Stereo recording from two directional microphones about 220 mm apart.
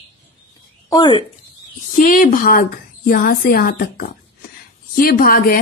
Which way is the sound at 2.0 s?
35° left (ahead or behind).